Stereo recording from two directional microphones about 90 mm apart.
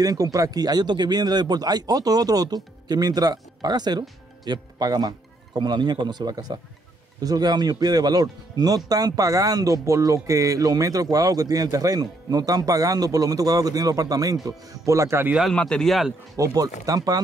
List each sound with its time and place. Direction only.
0.0 s speech: 40° right (ahead or behind)
15.5 s a man's voice: 10° left (ahead or behind)
16.3 s speech: 40° right (ahead or behind)